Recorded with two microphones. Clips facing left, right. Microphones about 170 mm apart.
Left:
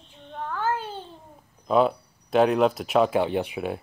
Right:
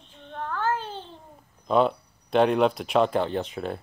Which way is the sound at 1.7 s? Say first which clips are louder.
Left 1 dB; 5° left (ahead or behind).